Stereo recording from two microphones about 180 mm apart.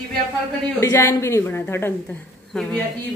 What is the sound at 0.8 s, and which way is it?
A woman's voice, 15° left (ahead or behind).